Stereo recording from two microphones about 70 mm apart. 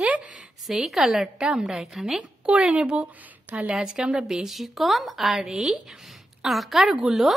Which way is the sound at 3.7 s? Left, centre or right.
Centre.